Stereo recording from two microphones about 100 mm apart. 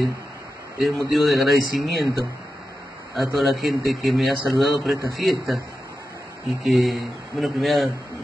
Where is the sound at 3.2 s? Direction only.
Centre (ahead or behind).